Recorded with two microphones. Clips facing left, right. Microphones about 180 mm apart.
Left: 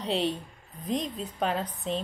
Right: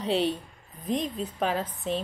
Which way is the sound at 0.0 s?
Centre (ahead or behind).